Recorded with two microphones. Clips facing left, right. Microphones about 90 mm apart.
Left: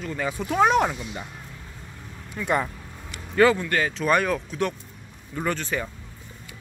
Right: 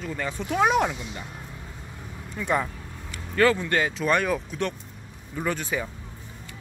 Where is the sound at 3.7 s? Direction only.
20° right (ahead or behind).